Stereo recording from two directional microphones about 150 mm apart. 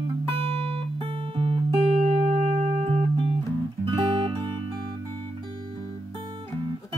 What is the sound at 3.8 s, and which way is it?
Music, 35° right (ahead or behind).